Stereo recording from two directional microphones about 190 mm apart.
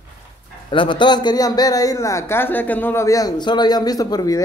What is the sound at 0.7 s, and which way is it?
Speech, 25° left (ahead or behind).